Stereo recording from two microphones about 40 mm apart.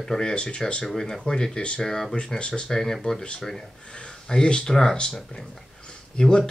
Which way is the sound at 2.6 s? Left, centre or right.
Centre.